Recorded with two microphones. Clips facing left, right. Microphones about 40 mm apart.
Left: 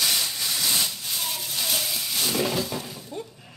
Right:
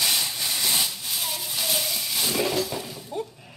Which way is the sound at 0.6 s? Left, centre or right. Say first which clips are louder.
Even; centre.